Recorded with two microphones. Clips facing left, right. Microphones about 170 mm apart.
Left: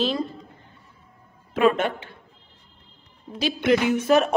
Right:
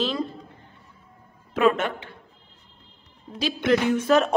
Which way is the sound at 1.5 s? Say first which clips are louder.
Left 1 dB; 30° left (ahead or behind).